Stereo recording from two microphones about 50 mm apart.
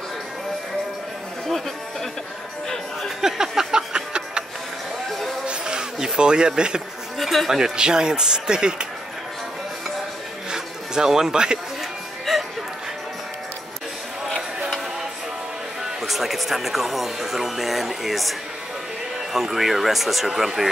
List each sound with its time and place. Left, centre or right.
3.0 s music: centre
5.5 s a sound: centre
7.2 s speech: centre
10.5 s a sound: centre
12.3 s music: centre
16.0 s speech: centre
19.3 s speech: centre